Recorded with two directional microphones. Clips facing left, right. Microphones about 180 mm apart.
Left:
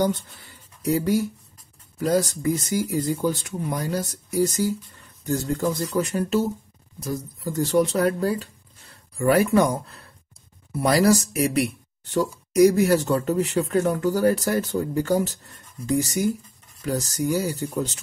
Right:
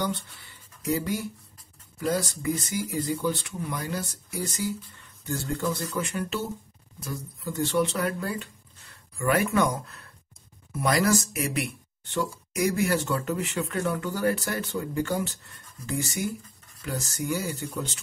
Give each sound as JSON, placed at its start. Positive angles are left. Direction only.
{"t": 0.9, "sound": "speech", "side_deg": 40}